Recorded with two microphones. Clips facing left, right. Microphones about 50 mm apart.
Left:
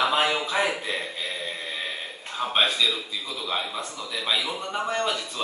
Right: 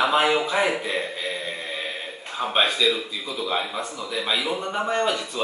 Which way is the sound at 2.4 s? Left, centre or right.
Centre.